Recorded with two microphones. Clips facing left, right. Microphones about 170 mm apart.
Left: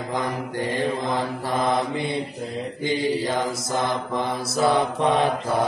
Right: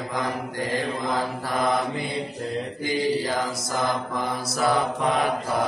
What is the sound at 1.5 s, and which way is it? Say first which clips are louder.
Mantra: left 1 dB; 25° left (ahead or behind).